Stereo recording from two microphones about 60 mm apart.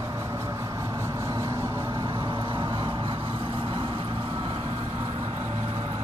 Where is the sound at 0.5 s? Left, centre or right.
Right.